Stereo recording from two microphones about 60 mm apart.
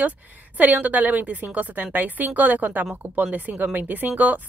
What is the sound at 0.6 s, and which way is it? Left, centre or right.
A woman's voice, right.